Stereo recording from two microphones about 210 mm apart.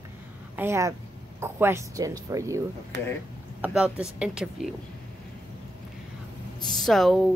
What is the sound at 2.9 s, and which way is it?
Speech, 55° right (ahead or behind).